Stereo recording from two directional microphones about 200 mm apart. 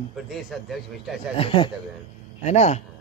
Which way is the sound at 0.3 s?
Centre (ahead or behind).